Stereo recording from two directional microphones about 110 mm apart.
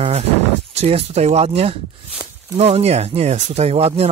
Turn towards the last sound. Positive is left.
turn(degrees=-65)  # may be behind; listen again after turning